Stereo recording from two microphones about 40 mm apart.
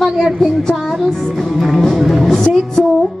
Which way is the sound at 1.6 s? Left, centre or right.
Centre.